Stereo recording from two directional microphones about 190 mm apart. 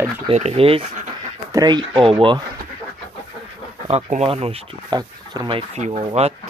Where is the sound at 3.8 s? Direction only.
35° right (ahead or behind).